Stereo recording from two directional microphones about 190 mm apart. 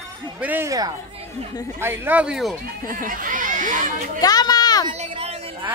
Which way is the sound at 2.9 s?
45° right (ahead or behind).